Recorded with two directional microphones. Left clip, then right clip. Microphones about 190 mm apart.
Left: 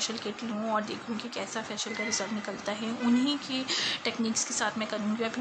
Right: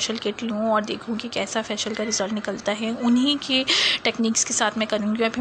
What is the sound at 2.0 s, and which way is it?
A woman's voice, 35° right (ahead or behind).